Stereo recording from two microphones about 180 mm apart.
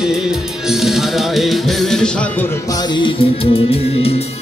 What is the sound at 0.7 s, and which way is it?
Music, centre (ahead or behind).